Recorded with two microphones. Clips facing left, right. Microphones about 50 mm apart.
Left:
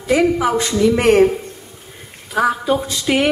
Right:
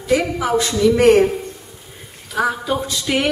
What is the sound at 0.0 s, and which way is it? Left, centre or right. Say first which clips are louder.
A woman's voice: left 3 dB; left.